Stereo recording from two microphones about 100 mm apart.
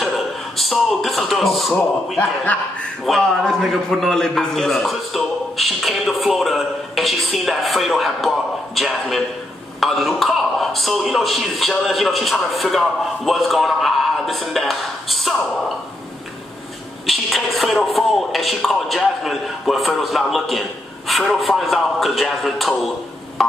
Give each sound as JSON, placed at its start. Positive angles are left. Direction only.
{"t": 0.6, "sound": "speech", "side_deg": 0}
{"t": 2.1, "sound": "speech", "side_deg": 15}
{"t": 3.1, "sound": "speech", "side_deg": 0}
{"t": 17.0, "sound": "speech", "side_deg": 0}